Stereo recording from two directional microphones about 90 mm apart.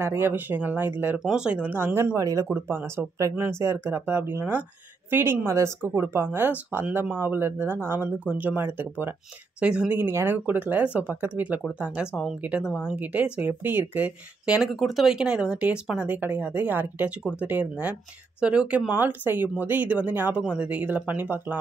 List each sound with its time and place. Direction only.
0.0 s speech: 25° right (ahead or behind)
1.2 s speech: 10° right (ahead or behind)
2.1 s speech: 40° right (ahead or behind)
2.4 s speech: 25° right (ahead or behind)
9.9 s speech: 20° right (ahead or behind)
14.7 s speech: centre (ahead or behind); by 21.5 s 20° right (ahead or behind)